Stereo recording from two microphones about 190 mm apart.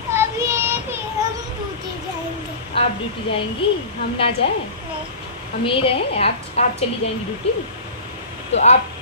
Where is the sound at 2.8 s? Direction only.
30° left (ahead or behind).